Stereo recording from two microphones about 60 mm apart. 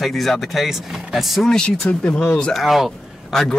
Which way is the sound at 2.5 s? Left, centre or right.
Centre.